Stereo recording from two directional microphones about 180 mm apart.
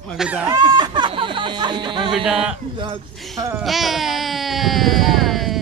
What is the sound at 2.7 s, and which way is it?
Speech, 25° right (ahead or behind).